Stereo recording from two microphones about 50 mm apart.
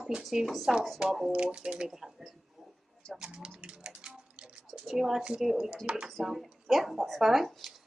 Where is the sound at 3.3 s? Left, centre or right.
Right.